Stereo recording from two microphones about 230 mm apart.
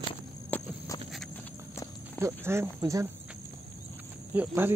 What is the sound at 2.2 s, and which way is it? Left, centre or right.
Speech, centre.